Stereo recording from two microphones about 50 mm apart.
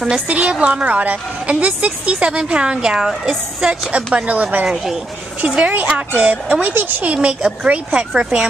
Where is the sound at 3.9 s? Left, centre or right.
Right.